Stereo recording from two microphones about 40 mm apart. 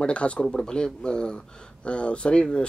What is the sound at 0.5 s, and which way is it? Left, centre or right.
Speech, centre.